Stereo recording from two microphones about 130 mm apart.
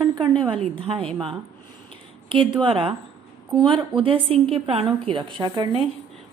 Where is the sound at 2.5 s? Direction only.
45° right (ahead or behind).